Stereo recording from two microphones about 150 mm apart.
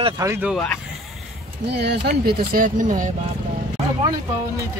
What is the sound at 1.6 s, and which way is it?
Speech, 90° right.